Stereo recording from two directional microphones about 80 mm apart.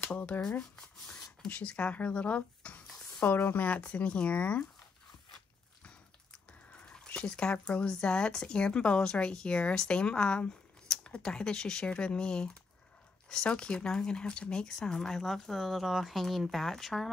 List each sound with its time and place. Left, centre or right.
0.1 s speech: centre
5.9 s speech: centre